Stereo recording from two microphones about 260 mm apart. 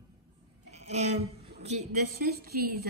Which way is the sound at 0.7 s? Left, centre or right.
Right.